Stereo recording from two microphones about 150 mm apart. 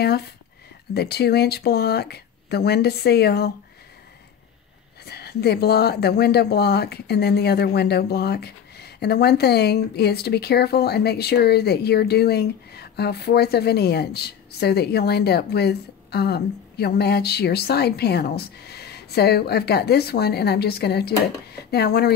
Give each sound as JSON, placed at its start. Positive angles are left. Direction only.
{"t": 0.0, "sound": "speech", "side_deg": 90}
{"t": 5.0, "sound": "speech", "side_deg": 90}